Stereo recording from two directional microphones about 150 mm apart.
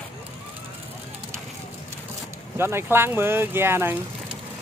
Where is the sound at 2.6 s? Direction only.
15° right (ahead or behind).